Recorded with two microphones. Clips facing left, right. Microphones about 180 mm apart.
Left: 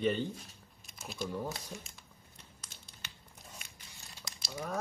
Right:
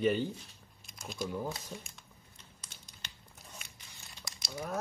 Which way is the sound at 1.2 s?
5° right (ahead or behind).